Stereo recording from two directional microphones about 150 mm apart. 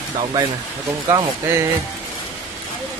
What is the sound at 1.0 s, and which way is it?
Speech, 25° right (ahead or behind).